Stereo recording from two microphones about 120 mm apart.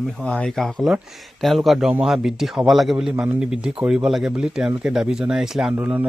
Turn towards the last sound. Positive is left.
turn(degrees=-5)  # may be behind; listen again after turning